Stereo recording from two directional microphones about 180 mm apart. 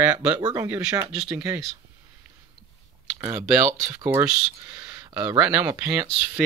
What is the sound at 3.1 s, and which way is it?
Speech, 15° right (ahead or behind).